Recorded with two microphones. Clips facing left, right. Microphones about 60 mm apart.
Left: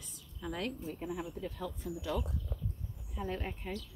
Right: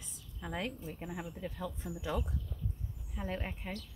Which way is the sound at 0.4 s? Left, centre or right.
Right.